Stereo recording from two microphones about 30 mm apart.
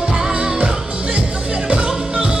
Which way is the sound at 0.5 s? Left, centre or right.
Right.